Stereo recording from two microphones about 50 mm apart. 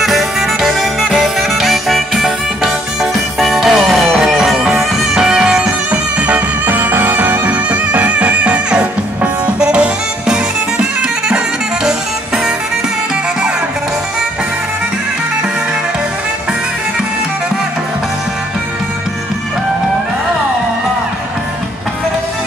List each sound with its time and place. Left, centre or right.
0.0 s music: centre; by 7.4 s right
7.4 s music: right